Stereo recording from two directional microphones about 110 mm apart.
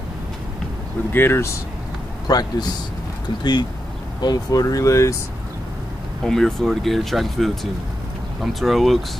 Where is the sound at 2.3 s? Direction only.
35° left (ahead or behind).